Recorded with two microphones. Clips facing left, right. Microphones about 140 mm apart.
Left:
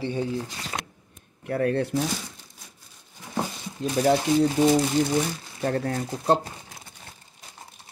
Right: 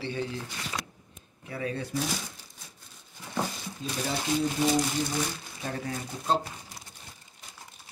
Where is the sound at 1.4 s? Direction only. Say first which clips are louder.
Left 10 dB; 60° left (ahead or behind).